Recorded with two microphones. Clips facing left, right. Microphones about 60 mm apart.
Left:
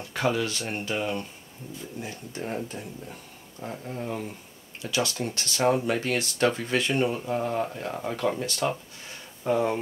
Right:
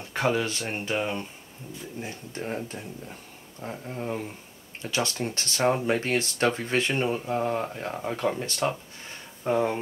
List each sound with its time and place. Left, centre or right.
0.1 s speech: right
2.0 s speech: right
3.6 s speech: right